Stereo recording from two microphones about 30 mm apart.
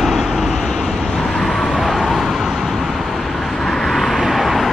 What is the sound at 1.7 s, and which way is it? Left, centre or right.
Vehicle, centre.